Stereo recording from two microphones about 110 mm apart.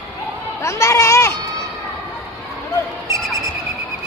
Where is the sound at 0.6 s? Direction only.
25° left (ahead or behind).